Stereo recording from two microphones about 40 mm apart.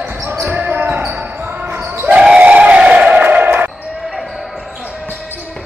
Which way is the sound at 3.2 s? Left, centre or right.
Right.